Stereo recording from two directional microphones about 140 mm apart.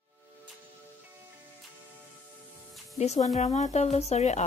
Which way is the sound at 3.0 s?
50° left (ahead or behind).